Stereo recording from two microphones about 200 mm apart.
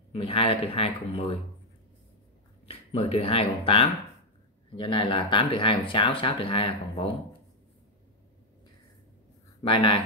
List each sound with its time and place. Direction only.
0.1 s speech: 25° left (ahead or behind)
2.7 s speech: 30° left (ahead or behind)
9.6 s speech: 25° left (ahead or behind)